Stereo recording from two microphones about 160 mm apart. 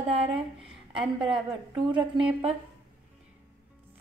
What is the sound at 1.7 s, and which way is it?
Speech, 30° right (ahead or behind).